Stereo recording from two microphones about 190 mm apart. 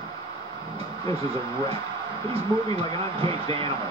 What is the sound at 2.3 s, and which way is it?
Speech, 30° right (ahead or behind).